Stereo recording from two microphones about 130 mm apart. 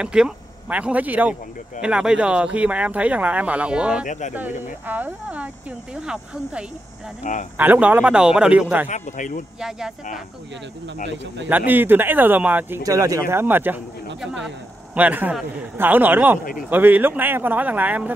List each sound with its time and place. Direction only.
0.0 s speech: 5° right (ahead or behind)
8.8 s speech: 70° left (ahead or behind)
9.6 s speech: 5° right (ahead or behind)
11.4 s speech: 15° right (ahead or behind)
12.8 s speech: 25° right (ahead or behind)
14.2 s speech: 5° right (ahead or behind)